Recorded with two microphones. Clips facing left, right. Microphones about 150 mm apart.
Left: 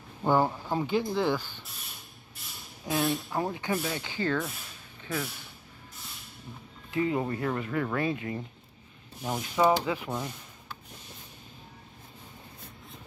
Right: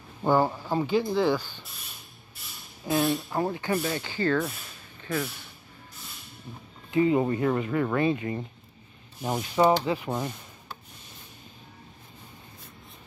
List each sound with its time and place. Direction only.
0.2 s speech: 5° right (ahead or behind)
2.8 s speech: centre (ahead or behind)
6.9 s speech: 5° right (ahead or behind)
9.2 s speech: 20° right (ahead or behind)